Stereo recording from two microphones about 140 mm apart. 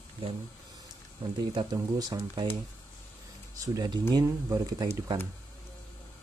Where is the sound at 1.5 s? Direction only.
30° right (ahead or behind).